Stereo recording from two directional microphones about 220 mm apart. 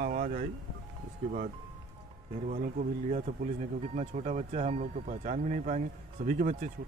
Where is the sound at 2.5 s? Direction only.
35° right (ahead or behind).